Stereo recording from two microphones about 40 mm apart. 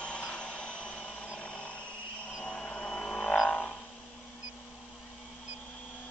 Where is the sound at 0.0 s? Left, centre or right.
Left.